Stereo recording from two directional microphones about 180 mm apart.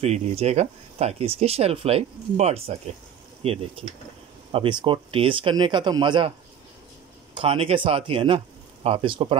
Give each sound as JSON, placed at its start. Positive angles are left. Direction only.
{"t": 0.0, "sound": "speech", "side_deg": -35}
{"t": 7.3, "sound": "speech", "side_deg": -30}